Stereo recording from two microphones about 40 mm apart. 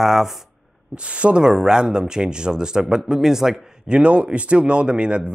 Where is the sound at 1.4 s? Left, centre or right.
Centre.